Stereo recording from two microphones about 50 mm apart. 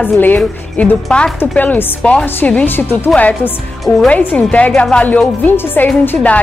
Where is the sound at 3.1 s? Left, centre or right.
Left.